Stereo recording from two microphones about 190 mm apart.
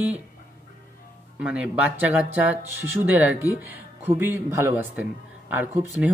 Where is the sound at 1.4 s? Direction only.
5° right (ahead or behind).